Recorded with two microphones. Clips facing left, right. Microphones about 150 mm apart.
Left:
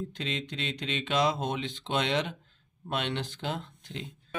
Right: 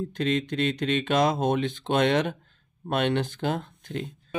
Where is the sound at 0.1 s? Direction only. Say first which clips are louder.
Right 9 dB; 50° right (ahead or behind).